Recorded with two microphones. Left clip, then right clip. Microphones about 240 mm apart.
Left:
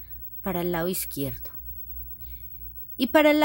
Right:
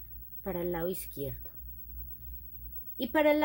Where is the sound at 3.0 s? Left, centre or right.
Left.